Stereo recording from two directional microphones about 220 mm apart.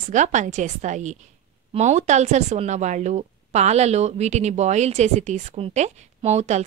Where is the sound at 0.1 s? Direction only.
35° right (ahead or behind).